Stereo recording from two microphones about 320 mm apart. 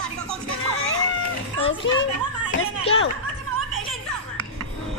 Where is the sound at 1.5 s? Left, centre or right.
Left.